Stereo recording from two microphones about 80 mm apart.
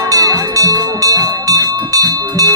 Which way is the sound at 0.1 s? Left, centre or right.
Right.